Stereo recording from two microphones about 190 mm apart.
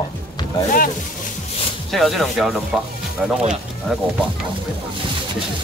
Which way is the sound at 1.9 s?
Centre (ahead or behind).